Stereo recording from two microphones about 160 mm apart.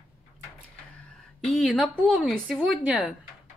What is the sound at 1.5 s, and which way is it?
Speech, centre (ahead or behind).